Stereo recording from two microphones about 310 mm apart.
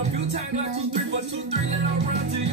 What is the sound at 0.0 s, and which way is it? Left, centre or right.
Music, right.